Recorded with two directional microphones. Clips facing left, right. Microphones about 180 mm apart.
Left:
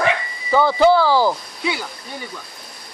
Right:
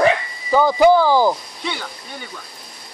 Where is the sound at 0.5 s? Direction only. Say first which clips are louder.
Right 1 dB; 10° right (ahead or behind).